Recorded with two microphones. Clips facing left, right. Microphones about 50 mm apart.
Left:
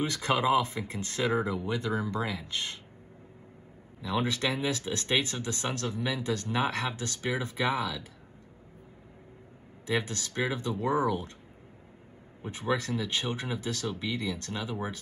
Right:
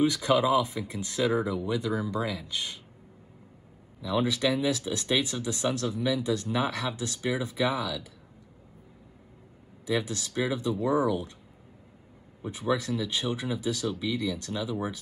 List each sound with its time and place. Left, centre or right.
0.0 s speech: left
4.0 s speech: left
9.8 s speech: left
12.7 s speech: left
14.1 s speech: left